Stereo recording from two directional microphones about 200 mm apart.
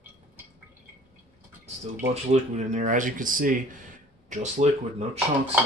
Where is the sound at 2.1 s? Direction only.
35° right (ahead or behind).